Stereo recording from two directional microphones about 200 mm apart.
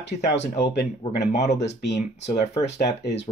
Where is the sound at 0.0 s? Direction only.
60° left (ahead or behind).